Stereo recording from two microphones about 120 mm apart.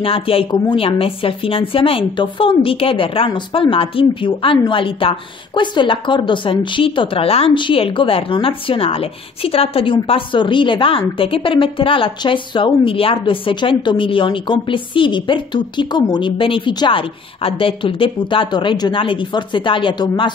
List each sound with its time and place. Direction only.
0.0 s a woman's voice: 50° left (ahead or behind)